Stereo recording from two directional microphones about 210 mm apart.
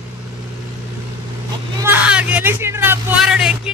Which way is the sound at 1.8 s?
10° right (ahead or behind).